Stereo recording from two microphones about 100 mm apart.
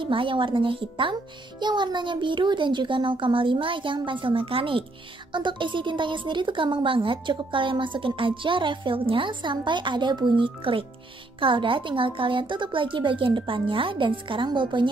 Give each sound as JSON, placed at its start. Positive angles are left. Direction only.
{"t": 0.0, "sound": "speech", "side_deg": -60}
{"t": 1.6, "sound": "speech", "side_deg": -50}
{"t": 5.3, "sound": "speech", "side_deg": -55}